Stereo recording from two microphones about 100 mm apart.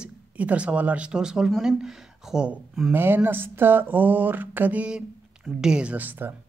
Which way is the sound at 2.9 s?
20° right (ahead or behind).